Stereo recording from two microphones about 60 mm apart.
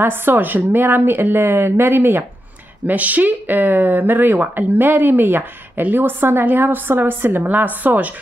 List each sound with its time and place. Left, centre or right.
0.0 s speech: right